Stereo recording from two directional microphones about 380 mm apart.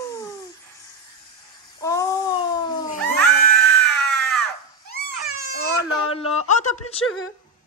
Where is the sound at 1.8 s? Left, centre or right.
Centre.